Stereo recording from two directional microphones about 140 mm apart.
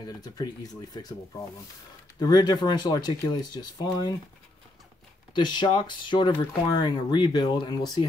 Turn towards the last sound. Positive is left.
turn(degrees=30)  # may be behind; listen again after turning